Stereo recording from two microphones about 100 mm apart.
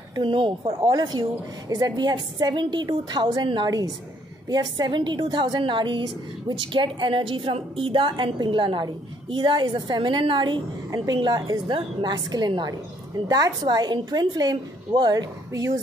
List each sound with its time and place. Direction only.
0.2 s a woman's voice: 60° right (ahead or behind)
0.9 s a woman's voice: 45° right (ahead or behind)
11.1 s a woman's voice: 45° right (ahead or behind)